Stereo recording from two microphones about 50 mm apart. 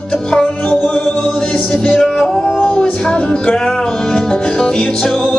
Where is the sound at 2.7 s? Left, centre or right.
Left.